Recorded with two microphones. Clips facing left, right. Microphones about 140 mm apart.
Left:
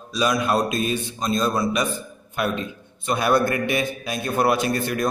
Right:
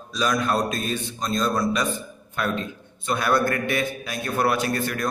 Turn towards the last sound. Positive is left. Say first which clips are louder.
# left 2 dB
turn(degrees=20)  # may be behind; listen again after turning